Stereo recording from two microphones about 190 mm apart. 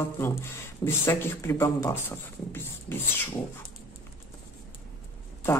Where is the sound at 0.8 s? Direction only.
10° left (ahead or behind).